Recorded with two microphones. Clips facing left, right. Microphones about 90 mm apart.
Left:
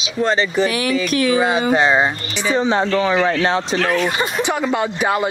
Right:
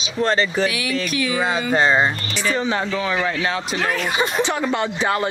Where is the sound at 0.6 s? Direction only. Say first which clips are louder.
Left 4 dB; 40° left (ahead or behind).